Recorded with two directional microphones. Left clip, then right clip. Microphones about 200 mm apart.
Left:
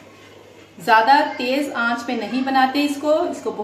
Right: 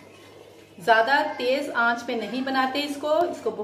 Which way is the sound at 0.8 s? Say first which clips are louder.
Left 6 dB; 15° left (ahead or behind).